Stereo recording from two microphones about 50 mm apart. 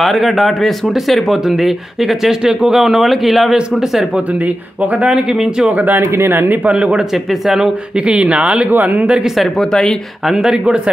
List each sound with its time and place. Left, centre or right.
0.0 s a man's voice: centre
4.9 s speech: right
5.3 s a man's voice: centre
5.7 s speech: right
5.9 s speech: right
6.6 s speech: right
7.2 s speech: centre
8.0 s speech: right
8.6 s speech: right
9.4 s speech: centre
10.2 s a man's voice: centre